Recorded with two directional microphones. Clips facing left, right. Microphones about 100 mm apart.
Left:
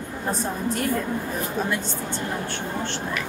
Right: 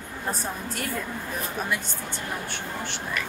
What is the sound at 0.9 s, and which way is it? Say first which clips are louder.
Speech: left 6 dB; 20° left (ahead or behind).